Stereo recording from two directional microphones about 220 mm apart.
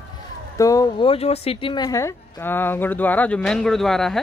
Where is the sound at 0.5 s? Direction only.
15° left (ahead or behind).